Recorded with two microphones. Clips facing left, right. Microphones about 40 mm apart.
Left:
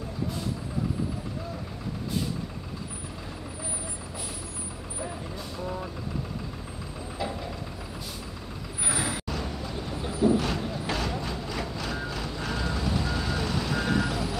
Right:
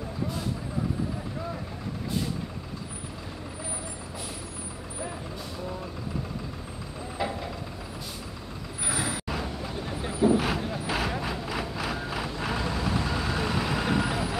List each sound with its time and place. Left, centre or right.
7.2 s vehicle: centre
8.8 s vehicle: centre
10.0 s vehicle: centre